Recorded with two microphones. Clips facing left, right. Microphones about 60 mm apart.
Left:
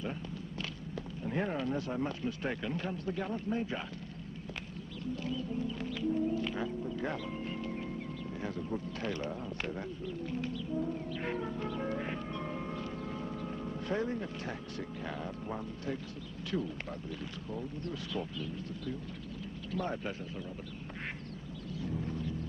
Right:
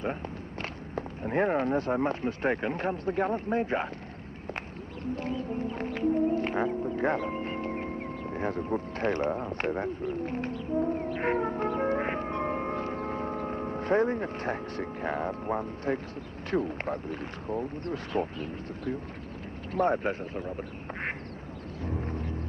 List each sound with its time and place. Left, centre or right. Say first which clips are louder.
0.6 s speech: right 8 dB; right
5.1 s music: right 4 dB; right
8.4 s speech: right 8 dB; right
21.8 s vehicle: right 3 dB; right